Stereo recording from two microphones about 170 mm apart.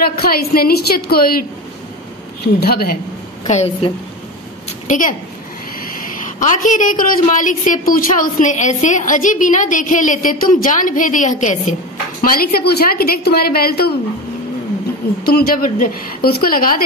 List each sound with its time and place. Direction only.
0.0 s a woman's voice: 60° left (ahead or behind)
2.4 s a woman's voice: 65° left (ahead or behind)
3.4 s a woman's voice: 40° left (ahead or behind)
4.8 s a woman's voice: 50° left (ahead or behind)
12.2 s a woman's voice: 60° left (ahead or behind)
15.2 s a woman's voice: 60° left (ahead or behind)